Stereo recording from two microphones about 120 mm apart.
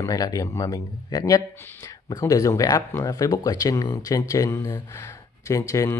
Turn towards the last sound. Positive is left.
turn(degrees=25)  # may be behind; listen again after turning